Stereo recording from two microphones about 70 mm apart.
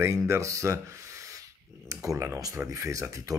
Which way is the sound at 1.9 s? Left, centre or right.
Right.